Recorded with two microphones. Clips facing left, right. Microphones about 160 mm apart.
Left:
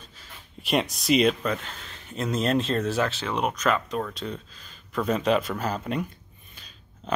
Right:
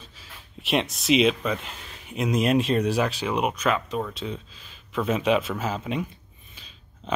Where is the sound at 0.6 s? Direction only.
Centre (ahead or behind).